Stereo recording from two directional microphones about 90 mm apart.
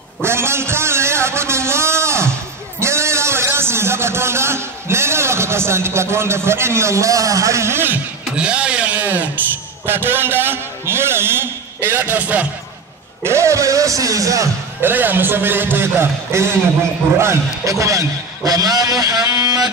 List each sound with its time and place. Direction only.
0.2 s a sound: 30° right (ahead or behind)
8.4 s a man's voice: 15° right (ahead or behind)
13.2 s speech: 30° right (ahead or behind)
14.8 s a man's voice: 20° right (ahead or behind); by 19.7 s 45° right (ahead or behind)